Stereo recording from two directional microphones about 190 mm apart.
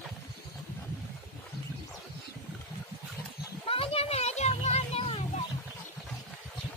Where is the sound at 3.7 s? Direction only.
30° left (ahead or behind).